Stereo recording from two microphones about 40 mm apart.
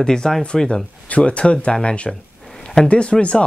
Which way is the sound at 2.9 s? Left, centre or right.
Left.